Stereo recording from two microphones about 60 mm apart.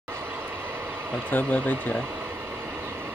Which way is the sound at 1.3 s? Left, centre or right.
Left.